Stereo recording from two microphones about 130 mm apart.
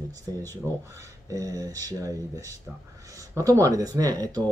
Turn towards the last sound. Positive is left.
turn(degrees=-30)  # may be behind; listen again after turning